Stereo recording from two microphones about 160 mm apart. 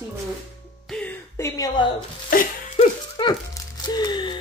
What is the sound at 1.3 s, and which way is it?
Speech, 20° left (ahead or behind).